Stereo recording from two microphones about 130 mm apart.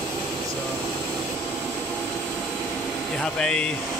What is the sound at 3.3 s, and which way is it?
Speech, 5° left (ahead or behind).